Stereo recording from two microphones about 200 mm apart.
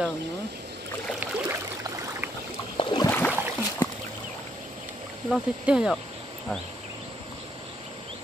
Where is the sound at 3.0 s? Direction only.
10° left (ahead or behind).